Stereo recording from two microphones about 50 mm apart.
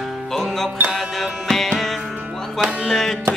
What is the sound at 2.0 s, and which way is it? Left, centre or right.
Music, right.